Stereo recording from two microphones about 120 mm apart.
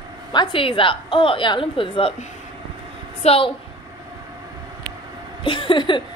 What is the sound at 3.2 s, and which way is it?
Speech, 55° left (ahead or behind).